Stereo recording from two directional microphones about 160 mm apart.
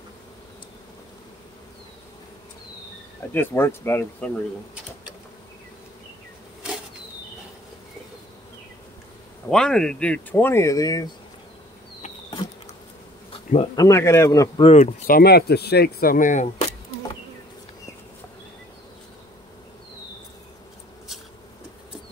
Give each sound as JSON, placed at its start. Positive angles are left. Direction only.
{"t": 3.3, "sound": "speech", "side_deg": 15}
{"t": 9.5, "sound": "speech", "side_deg": 5}
{"t": 13.3, "sound": "bee", "side_deg": 35}
{"t": 13.7, "sound": "speech", "side_deg": 20}
{"t": 14.8, "sound": "speech", "side_deg": 55}